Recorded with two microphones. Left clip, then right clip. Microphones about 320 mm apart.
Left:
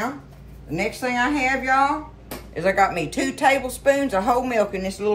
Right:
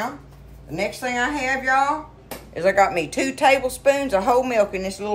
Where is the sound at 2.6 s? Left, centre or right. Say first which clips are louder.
Right 2 dB; centre.